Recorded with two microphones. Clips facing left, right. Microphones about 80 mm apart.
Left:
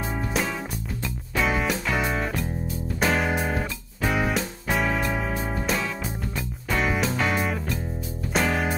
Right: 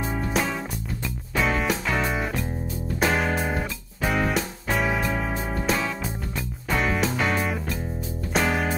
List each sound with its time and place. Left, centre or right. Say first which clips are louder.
0.2 s music: right 1 dB; centre